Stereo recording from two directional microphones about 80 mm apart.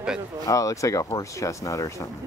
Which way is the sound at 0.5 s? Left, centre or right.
Left.